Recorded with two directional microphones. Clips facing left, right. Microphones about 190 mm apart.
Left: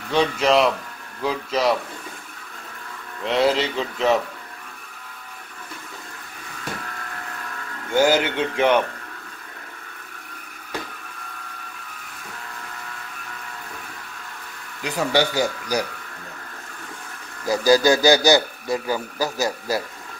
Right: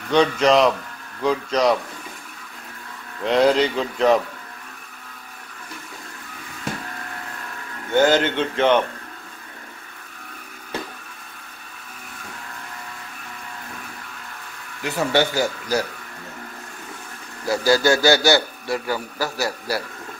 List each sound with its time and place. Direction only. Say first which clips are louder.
0.1 s speech: right 2 dB; 5° left (ahead or behind)
3.3 s speech: right 3 dB; centre (ahead or behind)
7.9 s a man's voice: right 1 dB; 10° left (ahead or behind)
15.1 s a man's voice: even; 15° left (ahead or behind)
17.5 s a man's voice: left 1 dB; 15° left (ahead or behind)